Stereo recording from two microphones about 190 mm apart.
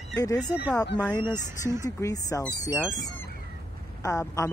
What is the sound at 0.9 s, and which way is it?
Speech, 10° left (ahead or behind).